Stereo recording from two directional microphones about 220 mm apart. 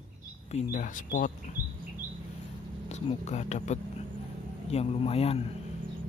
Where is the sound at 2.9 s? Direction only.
30° left (ahead or behind).